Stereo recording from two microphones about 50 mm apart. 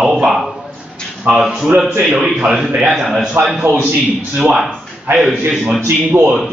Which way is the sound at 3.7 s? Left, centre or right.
Right.